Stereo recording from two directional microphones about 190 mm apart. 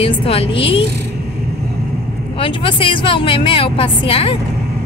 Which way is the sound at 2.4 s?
30° left (ahead or behind).